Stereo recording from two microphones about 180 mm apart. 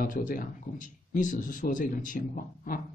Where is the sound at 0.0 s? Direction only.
50° left (ahead or behind).